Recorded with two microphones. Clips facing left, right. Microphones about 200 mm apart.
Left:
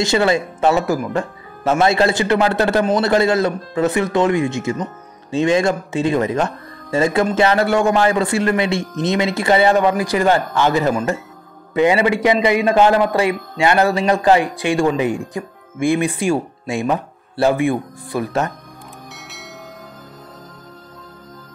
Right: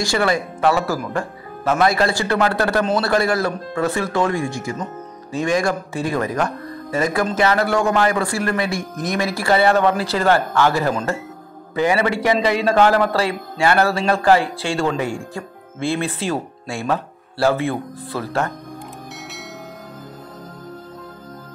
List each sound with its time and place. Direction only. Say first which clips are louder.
0.0 s a man's voice: left 3 dB; 25° left (ahead or behind)